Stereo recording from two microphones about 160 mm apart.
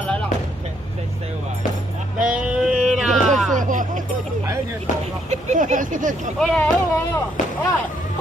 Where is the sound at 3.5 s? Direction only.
50° right (ahead or behind).